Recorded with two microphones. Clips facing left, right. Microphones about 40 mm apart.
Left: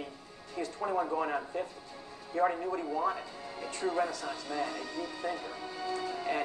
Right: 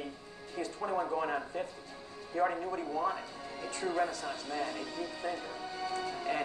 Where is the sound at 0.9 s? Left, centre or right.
Centre.